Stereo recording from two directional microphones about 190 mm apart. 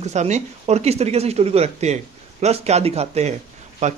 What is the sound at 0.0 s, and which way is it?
Speech, 35° right (ahead or behind).